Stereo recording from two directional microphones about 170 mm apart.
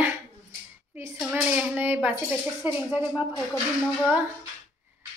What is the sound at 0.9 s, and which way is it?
Hands, 15° right (ahead or behind).